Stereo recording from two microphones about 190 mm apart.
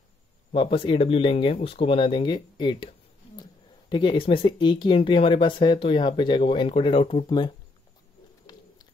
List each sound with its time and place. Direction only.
0.5 s speech: 30° left (ahead or behind)
3.9 s speech: 25° left (ahead or behind)